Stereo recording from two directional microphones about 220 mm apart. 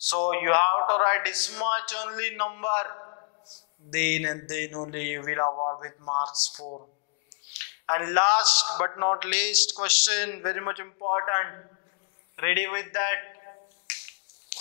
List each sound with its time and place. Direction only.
0.3 s speech: 15° left (ahead or behind)
3.9 s speech: 15° left (ahead or behind); by 6.9 s 30° left (ahead or behind)
7.5 s a man's voice: 20° left (ahead or behind)
8.6 s speech: 20° left (ahead or behind)